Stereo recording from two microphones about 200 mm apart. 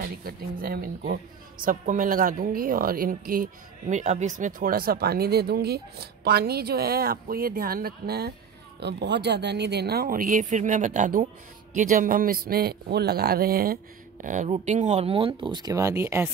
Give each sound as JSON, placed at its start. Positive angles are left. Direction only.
{"t": 0.0, "sound": "speech", "side_deg": -45}
{"t": 14.2, "sound": "speech", "side_deg": -40}